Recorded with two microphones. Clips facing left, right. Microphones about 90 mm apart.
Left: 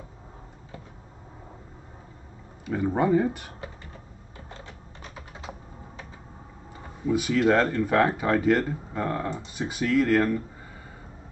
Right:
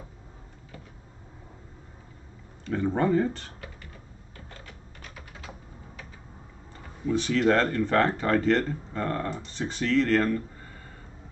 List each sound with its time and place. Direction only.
2.6 s speech: 10° left (ahead or behind)
4.5 s typing: 25° left (ahead or behind)
7.1 s speech: 10° left (ahead or behind)